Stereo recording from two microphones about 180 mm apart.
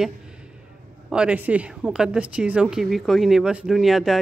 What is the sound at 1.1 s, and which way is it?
A woman's voice, 5° right (ahead or behind).